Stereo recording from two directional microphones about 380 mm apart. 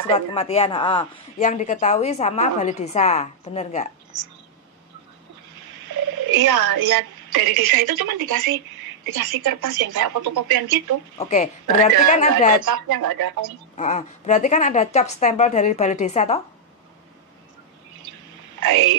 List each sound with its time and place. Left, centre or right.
0.1 s speech: centre
5.5 s speech: right
11.1 s speech: centre
12.5 s speech: right
13.7 s speech: centre
18.6 s speech: right